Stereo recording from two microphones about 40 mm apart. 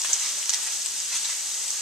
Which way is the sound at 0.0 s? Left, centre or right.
Centre.